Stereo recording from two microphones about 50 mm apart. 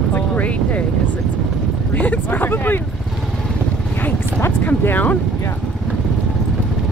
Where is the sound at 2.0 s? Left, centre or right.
Left.